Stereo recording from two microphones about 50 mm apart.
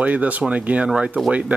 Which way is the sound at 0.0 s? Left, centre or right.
Right.